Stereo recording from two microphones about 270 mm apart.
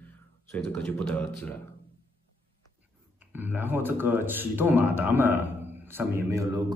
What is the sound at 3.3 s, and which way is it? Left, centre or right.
A man's voice, centre.